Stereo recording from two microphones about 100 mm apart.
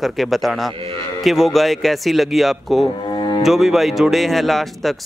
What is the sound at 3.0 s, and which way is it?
Cello, 50° left (ahead or behind).